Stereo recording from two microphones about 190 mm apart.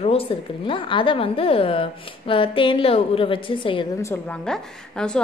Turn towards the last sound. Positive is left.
turn(degrees=5)  # may be behind; listen again after turning